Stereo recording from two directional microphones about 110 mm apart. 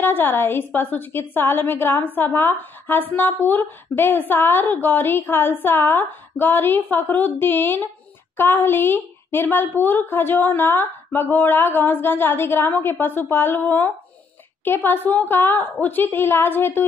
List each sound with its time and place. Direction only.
0.0 s a woman's voice: 20° left (ahead or behind)